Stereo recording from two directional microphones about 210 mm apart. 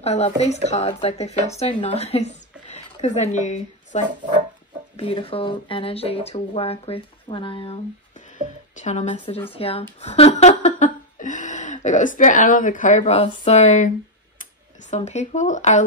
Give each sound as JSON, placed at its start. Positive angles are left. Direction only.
{"t": 0.0, "sound": "a woman's voice", "side_deg": 30}
{"t": 9.9, "sound": "a sound", "side_deg": 30}
{"t": 14.4, "sound": "speech", "side_deg": 35}